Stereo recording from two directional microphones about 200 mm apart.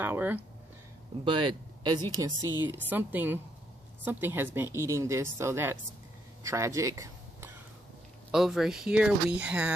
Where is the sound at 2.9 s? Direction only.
10° right (ahead or behind).